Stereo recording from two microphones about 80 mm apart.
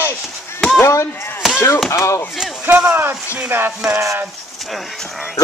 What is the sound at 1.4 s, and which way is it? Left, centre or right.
Chop, centre.